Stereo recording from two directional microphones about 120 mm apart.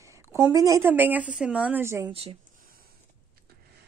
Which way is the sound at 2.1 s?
50° right (ahead or behind).